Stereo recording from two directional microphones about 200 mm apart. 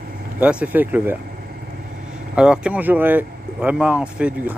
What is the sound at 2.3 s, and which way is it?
Speech, 5° right (ahead or behind).